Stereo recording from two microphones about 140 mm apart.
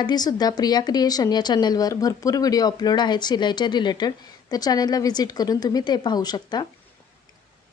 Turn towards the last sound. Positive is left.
turn(degrees=30)  # may be behind; listen again after turning